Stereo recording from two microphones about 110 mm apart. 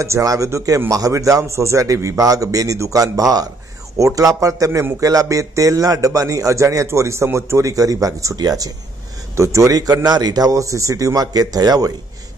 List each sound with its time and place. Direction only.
0.0 s a man's voice: 30° right (ahead or behind)